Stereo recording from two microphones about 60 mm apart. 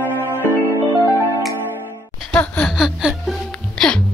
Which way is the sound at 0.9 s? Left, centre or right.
Right.